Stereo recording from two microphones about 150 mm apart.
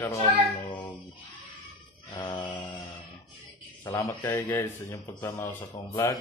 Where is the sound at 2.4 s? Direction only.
30° left (ahead or behind).